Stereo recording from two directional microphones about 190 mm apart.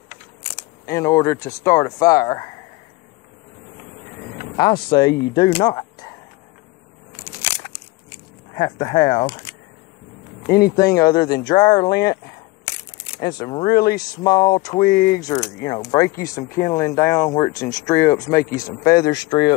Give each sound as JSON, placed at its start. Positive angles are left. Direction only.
{"t": 0.8, "sound": "speech", "side_deg": 15}
{"t": 4.6, "sound": "speech", "side_deg": 25}
{"t": 5.7, "sound": "a sound", "side_deg": 20}
{"t": 8.5, "sound": "speech", "side_deg": 20}
{"t": 10.4, "sound": "speech", "side_deg": 50}
{"t": 10.9, "sound": "speech", "side_deg": 20}
{"t": 13.2, "sound": "speech", "side_deg": 20}
{"t": 14.9, "sound": "speech", "side_deg": 45}
{"t": 15.2, "sound": "speech", "side_deg": 20}